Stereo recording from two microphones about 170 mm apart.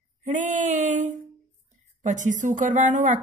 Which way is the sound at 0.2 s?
45° right (ahead or behind).